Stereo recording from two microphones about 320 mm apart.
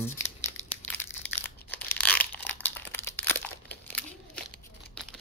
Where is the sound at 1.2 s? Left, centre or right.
Centre.